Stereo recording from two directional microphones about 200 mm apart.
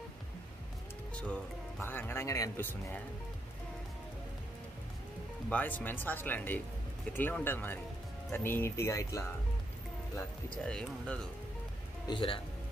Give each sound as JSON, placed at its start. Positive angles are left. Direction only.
{"t": 1.1, "sound": "speech", "side_deg": 10}
{"t": 5.5, "sound": "speech", "side_deg": 10}
{"t": 12.1, "sound": "speech", "side_deg": 25}